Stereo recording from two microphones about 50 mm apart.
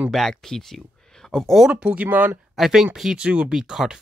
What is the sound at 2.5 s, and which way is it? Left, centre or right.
Speech, centre.